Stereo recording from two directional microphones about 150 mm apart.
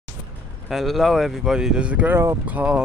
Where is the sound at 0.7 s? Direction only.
Centre (ahead or behind).